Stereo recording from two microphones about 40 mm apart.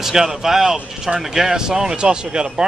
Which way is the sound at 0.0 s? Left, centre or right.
Centre.